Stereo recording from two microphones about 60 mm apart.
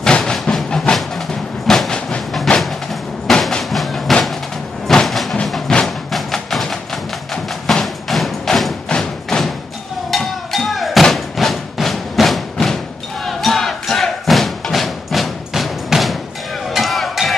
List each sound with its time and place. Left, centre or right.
0.0 s train: centre
2.0 s train: centre
2.6 s a sound: centre
3.3 s music: centre
4.8 s a sound: centre
5.7 s music: centre
8.8 s music: centre
13.2 s crowd: centre
16.7 s music: centre